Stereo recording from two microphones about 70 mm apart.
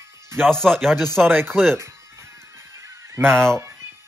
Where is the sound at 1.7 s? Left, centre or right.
Right.